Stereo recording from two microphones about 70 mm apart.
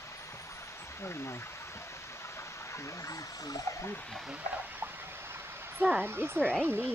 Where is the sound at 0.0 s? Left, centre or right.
Left.